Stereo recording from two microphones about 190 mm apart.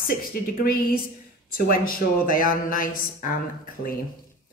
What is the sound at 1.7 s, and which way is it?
Speech, 50° left (ahead or behind).